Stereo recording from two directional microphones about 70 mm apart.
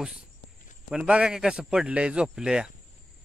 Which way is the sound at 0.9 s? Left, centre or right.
Centre.